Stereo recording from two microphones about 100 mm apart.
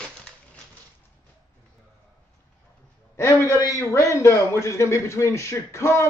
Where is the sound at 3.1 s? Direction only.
30° left (ahead or behind).